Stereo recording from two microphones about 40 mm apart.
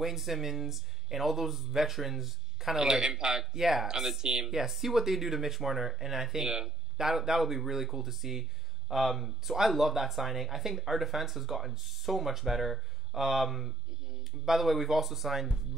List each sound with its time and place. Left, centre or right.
0.0 s speech: centre
2.8 s speech: centre